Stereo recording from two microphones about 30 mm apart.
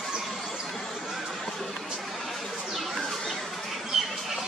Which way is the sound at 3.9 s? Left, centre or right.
Centre.